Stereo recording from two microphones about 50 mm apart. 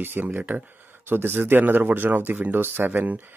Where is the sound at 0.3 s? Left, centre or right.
Right.